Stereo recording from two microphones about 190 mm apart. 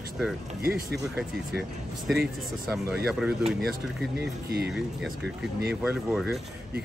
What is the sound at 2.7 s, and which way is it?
Speech, 15° right (ahead or behind).